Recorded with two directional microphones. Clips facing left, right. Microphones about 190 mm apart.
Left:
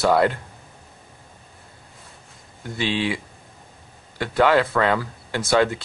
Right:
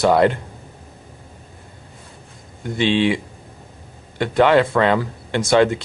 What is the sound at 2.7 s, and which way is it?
Speech, 25° right (ahead or behind).